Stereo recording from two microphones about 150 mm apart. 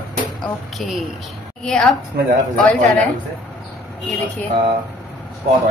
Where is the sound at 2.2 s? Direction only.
85° right.